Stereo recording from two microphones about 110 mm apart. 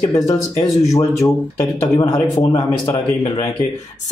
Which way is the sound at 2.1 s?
60° left (ahead or behind).